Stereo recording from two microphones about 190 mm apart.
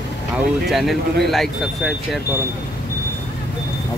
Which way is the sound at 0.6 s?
Centre (ahead or behind).